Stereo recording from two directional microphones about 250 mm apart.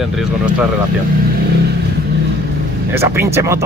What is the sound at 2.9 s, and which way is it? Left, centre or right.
Speech, centre.